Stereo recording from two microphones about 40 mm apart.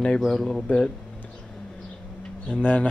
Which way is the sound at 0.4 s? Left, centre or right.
Centre.